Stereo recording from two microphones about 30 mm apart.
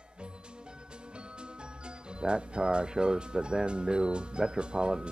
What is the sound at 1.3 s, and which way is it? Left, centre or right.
Speech, right.